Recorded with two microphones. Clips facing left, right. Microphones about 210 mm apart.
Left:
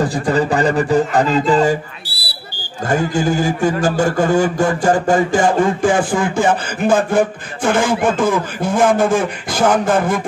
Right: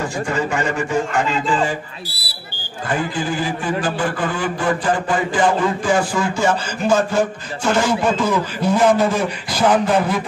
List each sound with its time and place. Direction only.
0.0 s a man's voice: 35° left (ahead or behind)
2.9 s a man's voice: 45° left (ahead or behind)